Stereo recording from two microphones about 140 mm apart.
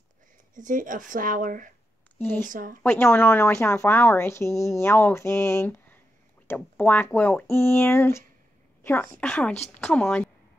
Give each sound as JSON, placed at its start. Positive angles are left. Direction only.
{"t": 0.6, "sound": "speech", "side_deg": -70}
{"t": 2.1, "sound": "speech", "side_deg": 15}
{"t": 2.4, "sound": "speech", "side_deg": -75}
{"t": 2.8, "sound": "speech", "side_deg": 15}